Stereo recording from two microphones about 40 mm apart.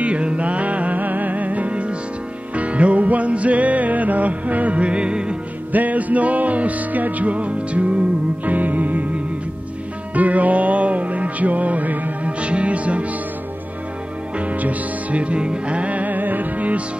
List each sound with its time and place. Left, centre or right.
0.0 s music: right
5.7 s music: right
12.3 s music: right
14.4 s music: right